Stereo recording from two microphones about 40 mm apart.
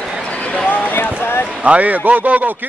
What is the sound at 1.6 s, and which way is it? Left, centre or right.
Speech, right.